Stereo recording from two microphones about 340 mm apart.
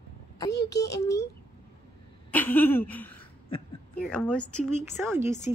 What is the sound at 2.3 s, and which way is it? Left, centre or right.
Speech, centre.